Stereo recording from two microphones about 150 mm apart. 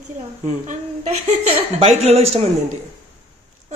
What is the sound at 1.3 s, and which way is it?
Speech, 45° right (ahead or behind).